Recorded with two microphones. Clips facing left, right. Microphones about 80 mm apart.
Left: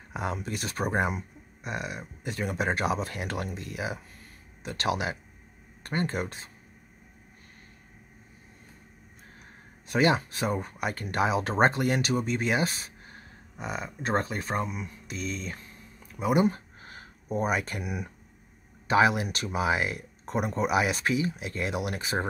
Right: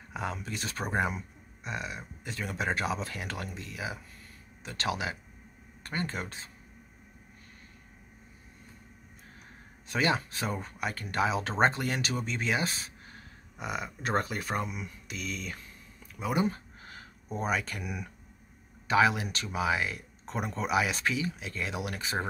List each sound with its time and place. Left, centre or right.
0.1 s speech: centre
9.8 s speech: centre
13.1 s speech: left
14.6 s speech: centre
15.0 s speech: left
16.3 s speech: centre
16.5 s a sound: left
17.3 s speech: centre
19.2 s speech: centre
19.7 s speech: left
20.2 s speech: centre